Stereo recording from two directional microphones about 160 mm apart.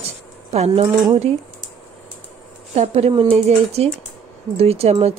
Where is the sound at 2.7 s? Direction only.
40° right (ahead or behind).